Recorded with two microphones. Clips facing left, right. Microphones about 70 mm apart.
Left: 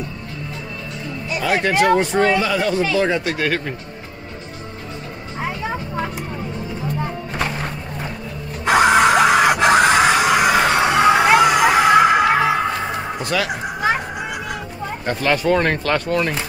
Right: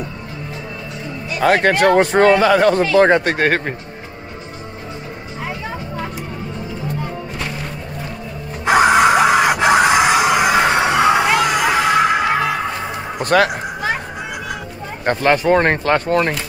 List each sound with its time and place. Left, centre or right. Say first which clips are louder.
1.4 s speech: right 4 dB; right
8.7 s screaming: right 1 dB; centre
11.0 s vehicle: left 4 dB; centre
11.6 s music: left 2 dB; centre
13.2 s a man's voice: right 9 dB; right
15.1 s speech: right 3 dB; right